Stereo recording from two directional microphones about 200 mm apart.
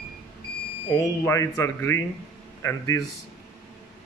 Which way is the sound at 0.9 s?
15° left (ahead or behind).